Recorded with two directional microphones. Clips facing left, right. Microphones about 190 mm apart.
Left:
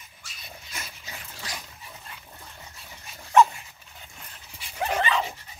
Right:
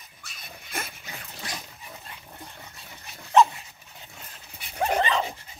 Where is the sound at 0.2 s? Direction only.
55° right (ahead or behind).